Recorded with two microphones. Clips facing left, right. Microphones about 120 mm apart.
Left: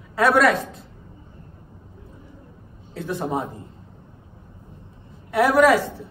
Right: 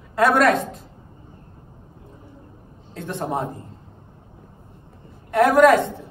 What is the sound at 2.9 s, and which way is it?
Speech, 5° left (ahead or behind).